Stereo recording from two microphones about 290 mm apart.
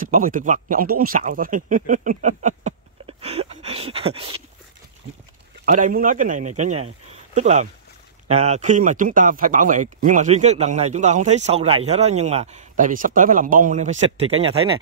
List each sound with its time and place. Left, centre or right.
0.0 s speech: right
5.7 s speech: right